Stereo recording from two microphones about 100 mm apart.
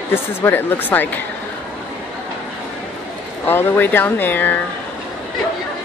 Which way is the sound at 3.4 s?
20° left (ahead or behind).